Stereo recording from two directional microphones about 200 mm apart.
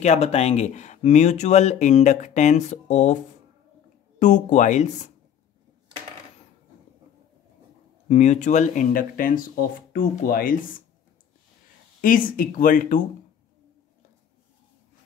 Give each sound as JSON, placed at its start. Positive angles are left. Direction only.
{"t": 0.0, "sound": "speech", "side_deg": 35}
{"t": 4.2, "sound": "speech", "side_deg": 35}
{"t": 8.1, "sound": "speech", "side_deg": 35}
{"t": 12.0, "sound": "speech", "side_deg": 45}